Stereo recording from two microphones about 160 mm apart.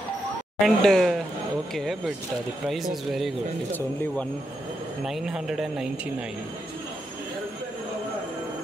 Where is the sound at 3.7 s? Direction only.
10° left (ahead or behind).